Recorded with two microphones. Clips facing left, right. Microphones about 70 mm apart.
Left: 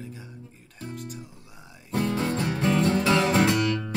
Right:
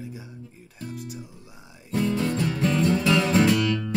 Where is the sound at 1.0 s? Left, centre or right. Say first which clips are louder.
Right 1 dB; centre.